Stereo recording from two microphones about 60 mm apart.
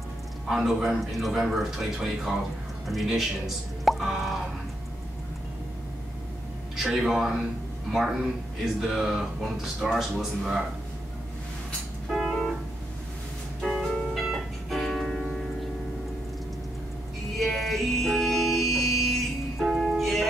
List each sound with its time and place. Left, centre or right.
0.5 s a man's voice: centre
6.8 s a man's voice: centre
8.8 s a man's voice: centre
12.1 s music: centre
13.6 s music: centre
17.4 s music: centre